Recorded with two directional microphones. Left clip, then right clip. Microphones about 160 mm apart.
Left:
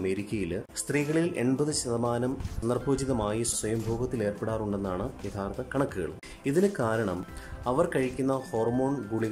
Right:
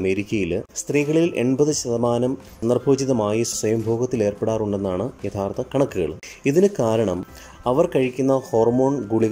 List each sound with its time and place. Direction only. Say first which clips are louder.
0.0 s speech: right 9 dB; 15° right (ahead or behind)